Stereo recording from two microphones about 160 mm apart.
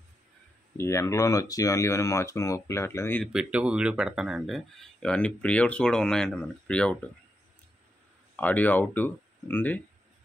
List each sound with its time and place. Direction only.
0.7 s speech: 20° left (ahead or behind)
3.3 s speech: 5° right (ahead or behind)
8.4 s speech: 10° left (ahead or behind)